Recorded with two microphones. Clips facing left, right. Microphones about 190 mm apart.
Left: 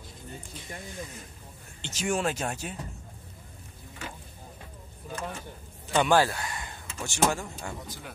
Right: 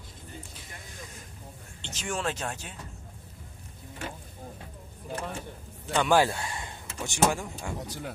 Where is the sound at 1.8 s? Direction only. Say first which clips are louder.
Left 4 dB; 10° left (ahead or behind).